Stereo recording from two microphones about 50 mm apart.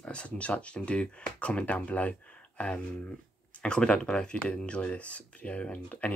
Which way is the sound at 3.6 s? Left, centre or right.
Centre.